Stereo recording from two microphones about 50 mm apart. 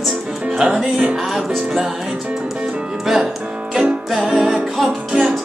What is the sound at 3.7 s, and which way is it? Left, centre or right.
Music, centre.